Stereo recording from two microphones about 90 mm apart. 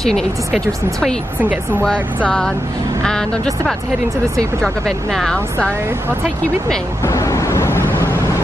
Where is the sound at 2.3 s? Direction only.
10° left (ahead or behind).